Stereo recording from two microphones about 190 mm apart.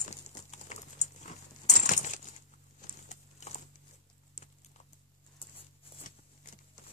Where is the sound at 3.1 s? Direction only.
40° left (ahead or behind).